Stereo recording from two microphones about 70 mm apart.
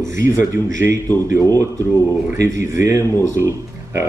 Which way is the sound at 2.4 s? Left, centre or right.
Right.